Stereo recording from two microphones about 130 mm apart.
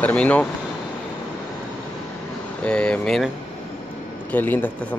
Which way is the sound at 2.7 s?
5° left (ahead or behind).